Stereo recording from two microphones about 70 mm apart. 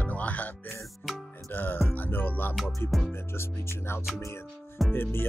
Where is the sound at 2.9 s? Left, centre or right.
Centre.